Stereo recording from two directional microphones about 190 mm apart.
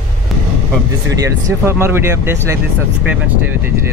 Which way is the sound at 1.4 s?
15° right (ahead or behind).